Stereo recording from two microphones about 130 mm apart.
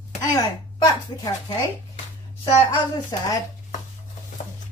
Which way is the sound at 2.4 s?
30° left (ahead or behind).